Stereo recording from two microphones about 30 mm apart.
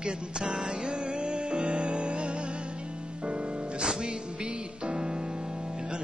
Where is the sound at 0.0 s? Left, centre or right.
Right.